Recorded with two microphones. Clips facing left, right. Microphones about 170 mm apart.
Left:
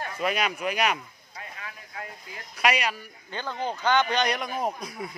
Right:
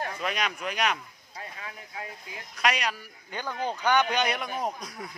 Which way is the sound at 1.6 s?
25° right (ahead or behind).